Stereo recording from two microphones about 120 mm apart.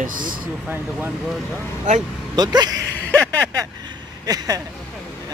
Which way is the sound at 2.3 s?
35° right (ahead or behind).